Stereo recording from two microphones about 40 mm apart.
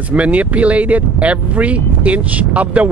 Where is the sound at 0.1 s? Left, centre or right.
Right.